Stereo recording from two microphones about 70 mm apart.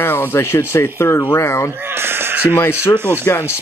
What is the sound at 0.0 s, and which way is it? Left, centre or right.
Speech, left.